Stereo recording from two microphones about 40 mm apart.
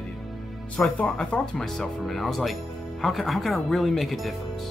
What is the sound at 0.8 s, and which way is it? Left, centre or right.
Speech, centre.